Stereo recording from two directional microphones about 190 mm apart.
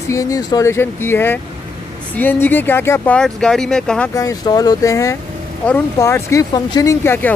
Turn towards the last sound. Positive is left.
turn(degrees=10)  # may be behind; listen again after turning